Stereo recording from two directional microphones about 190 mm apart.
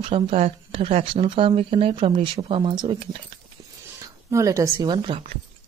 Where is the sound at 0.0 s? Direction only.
30° right (ahead or behind).